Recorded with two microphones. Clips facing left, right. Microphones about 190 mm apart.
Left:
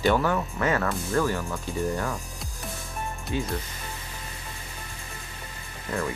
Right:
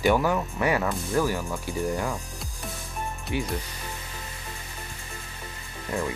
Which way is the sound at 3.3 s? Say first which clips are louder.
Even; 15° right (ahead or behind).